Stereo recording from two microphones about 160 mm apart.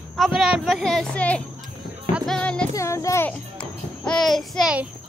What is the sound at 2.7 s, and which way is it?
A child's voice, 20° left (ahead or behind).